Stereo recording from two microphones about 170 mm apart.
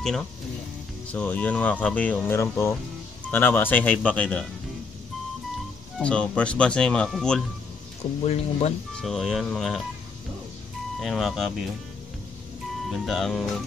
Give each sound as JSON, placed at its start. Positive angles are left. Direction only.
{"t": 1.1, "sound": "speech", "side_deg": 10}
{"t": 5.9, "sound": "speech", "side_deg": 5}
{"t": 8.3, "sound": "speech", "side_deg": 40}
{"t": 8.9, "sound": "speech", "side_deg": 0}
{"t": 11.0, "sound": "speech", "side_deg": 0}
{"t": 12.9, "sound": "speech", "side_deg": 0}